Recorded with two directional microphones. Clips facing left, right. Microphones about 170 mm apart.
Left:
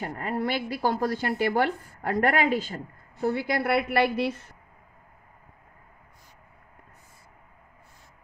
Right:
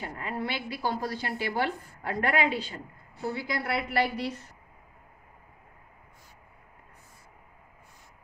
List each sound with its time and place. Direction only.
0.0 s a woman's voice: 45° left (ahead or behind)